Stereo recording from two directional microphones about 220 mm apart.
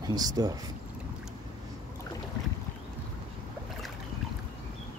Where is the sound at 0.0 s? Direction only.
20° right (ahead or behind).